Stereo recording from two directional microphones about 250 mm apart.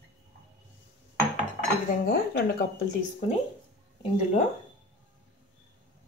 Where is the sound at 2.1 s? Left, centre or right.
Left.